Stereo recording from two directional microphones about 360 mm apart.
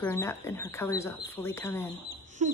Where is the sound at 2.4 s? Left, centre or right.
Centre.